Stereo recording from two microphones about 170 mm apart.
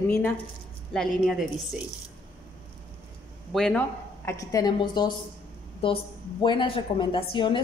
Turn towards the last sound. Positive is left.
turn(degrees=30)  # may be behind; listen again after turning